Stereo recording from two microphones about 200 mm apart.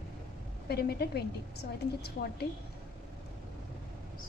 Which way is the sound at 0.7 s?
50° left (ahead or behind).